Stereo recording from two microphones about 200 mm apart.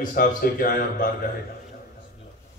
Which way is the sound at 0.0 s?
40° left (ahead or behind).